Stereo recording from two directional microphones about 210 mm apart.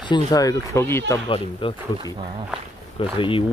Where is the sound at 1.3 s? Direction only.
25° left (ahead or behind).